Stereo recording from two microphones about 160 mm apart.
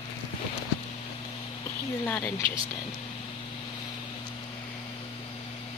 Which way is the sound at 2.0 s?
15° left (ahead or behind).